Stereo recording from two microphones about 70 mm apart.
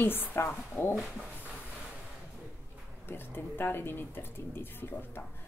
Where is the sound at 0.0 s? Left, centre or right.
Left.